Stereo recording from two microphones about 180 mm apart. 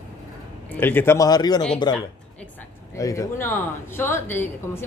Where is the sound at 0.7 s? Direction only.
10° left (ahead or behind).